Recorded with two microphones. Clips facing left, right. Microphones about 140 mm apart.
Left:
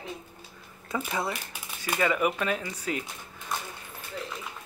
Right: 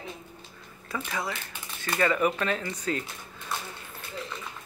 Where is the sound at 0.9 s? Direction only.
20° left (ahead or behind).